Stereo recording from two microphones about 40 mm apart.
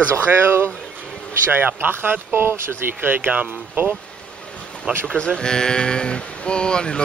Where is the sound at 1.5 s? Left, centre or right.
Right.